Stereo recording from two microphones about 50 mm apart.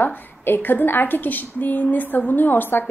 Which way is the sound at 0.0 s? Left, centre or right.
Left.